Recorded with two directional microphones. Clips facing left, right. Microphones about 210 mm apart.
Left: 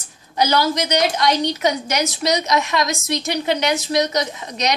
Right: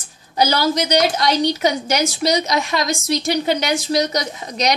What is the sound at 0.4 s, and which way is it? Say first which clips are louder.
A woman's voice: right 1 dB; 35° right (ahead or behind).